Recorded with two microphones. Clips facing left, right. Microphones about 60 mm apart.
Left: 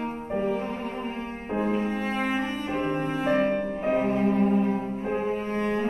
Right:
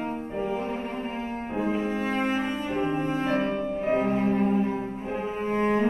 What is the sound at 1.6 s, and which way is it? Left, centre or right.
Music, centre.